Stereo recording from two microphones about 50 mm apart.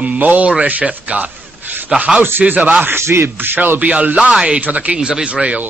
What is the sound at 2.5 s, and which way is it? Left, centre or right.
Speech, right.